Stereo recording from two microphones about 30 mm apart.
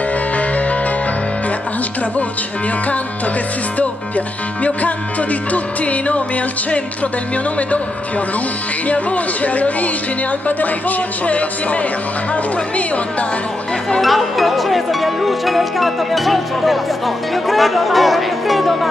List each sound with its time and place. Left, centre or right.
5.5 s music: left
8.8 s music: left
14.0 s speech: centre